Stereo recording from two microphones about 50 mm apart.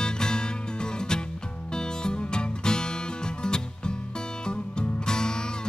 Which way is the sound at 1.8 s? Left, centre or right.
Centre.